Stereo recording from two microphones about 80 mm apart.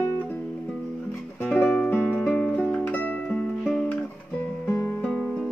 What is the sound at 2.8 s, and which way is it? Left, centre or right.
Music, left.